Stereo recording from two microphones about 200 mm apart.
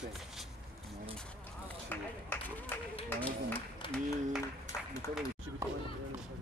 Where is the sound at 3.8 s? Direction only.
25° left (ahead or behind).